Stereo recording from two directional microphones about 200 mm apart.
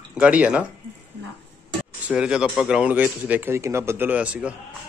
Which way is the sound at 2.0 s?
5° right (ahead or behind).